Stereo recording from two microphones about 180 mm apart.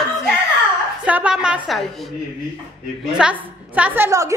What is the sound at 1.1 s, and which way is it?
Speech, 5° right (ahead or behind).